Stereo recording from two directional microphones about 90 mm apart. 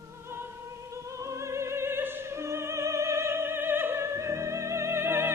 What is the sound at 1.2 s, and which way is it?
Opera, 35° right (ahead or behind).